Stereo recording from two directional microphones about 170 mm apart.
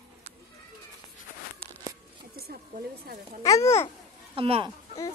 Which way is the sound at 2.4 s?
65° right (ahead or behind).